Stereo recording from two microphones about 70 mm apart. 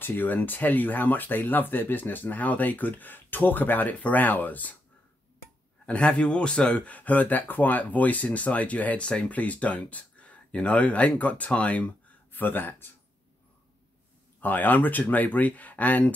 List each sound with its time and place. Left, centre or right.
0.0 s speech: left
5.9 s speech: centre
14.4 s speech: left